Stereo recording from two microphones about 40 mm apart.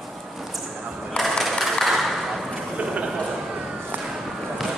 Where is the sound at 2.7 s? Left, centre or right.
Right.